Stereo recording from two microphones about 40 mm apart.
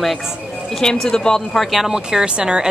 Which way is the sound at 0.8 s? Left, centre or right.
Centre.